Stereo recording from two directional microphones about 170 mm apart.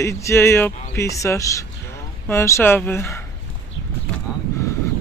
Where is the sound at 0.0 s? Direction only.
15° left (ahead or behind).